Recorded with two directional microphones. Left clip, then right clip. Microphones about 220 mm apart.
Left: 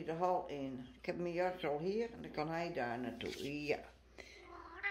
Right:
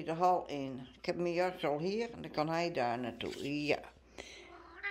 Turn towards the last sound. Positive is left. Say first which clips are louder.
# right 5 dB
turn(degrees=-55)  # may be behind; listen again after turning